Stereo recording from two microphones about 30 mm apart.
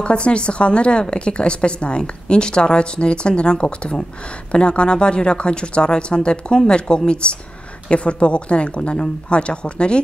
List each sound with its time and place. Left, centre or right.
0.0 s a woman's voice: left